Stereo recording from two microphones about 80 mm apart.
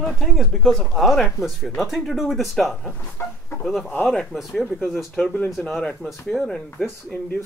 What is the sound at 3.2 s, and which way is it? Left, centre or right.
Speech, left.